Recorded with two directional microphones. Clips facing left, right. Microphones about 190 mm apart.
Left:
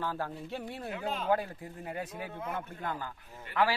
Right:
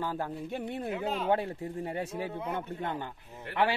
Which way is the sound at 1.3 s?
25° right (ahead or behind).